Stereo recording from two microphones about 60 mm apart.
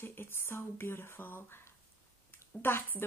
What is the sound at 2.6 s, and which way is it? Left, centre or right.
Speech, left.